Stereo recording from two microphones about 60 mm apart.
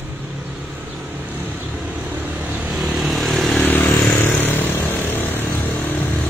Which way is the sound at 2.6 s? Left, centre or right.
Centre.